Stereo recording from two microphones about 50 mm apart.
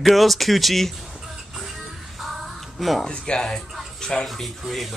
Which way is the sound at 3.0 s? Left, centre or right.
Centre.